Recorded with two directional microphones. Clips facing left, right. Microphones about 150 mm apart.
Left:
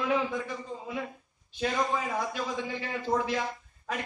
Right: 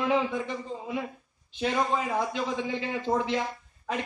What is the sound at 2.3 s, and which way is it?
A man's voice, 20° right (ahead or behind).